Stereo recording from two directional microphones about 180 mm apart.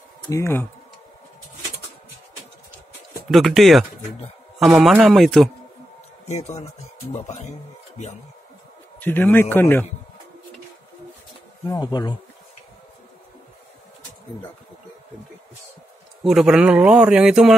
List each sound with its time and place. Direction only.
0.3 s a man's voice: 15° left (ahead or behind)
3.3 s a man's voice: centre (ahead or behind)
6.2 s speech: 40° left (ahead or behind)
9.0 s a man's voice: 10° left (ahead or behind)
11.6 s speech: 20° left (ahead or behind)
16.3 s a man's voice: 5° right (ahead or behind)